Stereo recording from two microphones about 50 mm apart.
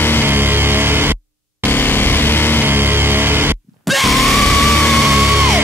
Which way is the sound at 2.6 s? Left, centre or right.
Right.